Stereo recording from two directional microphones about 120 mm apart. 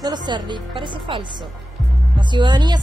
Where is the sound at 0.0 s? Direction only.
40° right (ahead or behind).